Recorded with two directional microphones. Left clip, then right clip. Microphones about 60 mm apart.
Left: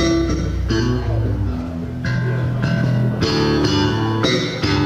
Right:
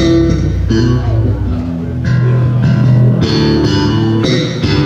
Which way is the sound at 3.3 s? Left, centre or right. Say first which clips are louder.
Right 4 dB; left.